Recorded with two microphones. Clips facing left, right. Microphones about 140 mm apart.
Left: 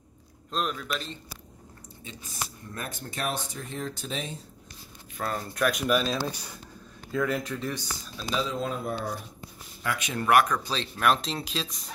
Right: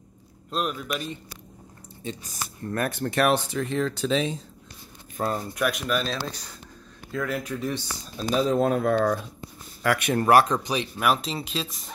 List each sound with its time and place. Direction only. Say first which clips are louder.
0.5 s a man's voice: right 2 dB; 10° right (ahead or behind)
2.6 s speech: right 11 dB; 65° right (ahead or behind); by 4.4 s 90° right
5.1 s speech: right 4 dB; 30° right (ahead or behind)
5.5 s a man's voice: even; 10° right (ahead or behind)
5.9 s speech: left 2 dB; 5° left (ahead or behind)
7.1 s speech: left 1 dB; centre (ahead or behind)
8.2 s speech: right 8 dB; 45° right (ahead or behind)
8.8 s speech: right 10 dB; 90° right
9.8 s speech: right 8 dB; 60° right (ahead or behind)
10.2 s speech: right 3 dB; 30° right (ahead or behind)
10.6 s speech: right 2 dB; 15° right (ahead or behind)